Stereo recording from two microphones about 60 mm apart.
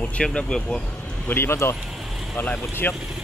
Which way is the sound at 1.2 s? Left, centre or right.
Left.